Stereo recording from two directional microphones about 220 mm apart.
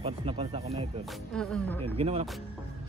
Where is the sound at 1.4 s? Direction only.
5° left (ahead or behind).